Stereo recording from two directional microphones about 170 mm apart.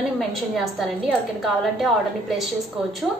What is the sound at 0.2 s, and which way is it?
A woman's voice, centre (ahead or behind).